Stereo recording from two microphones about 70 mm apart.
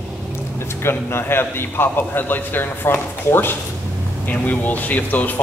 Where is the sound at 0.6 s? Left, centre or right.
Left.